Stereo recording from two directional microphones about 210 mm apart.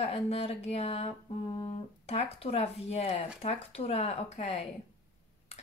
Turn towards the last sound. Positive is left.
turn(degrees=30)  # may be behind; listen again after turning